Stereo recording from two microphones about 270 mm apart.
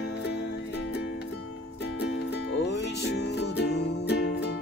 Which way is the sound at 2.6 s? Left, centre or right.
Left.